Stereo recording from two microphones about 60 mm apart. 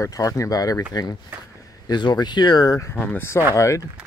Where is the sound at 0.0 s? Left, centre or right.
Left.